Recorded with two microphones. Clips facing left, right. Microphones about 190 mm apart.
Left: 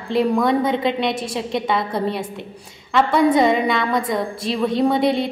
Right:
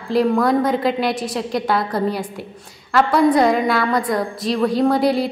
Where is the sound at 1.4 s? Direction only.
Centre (ahead or behind).